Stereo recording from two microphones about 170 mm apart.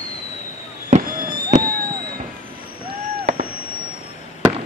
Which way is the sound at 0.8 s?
50° right (ahead or behind).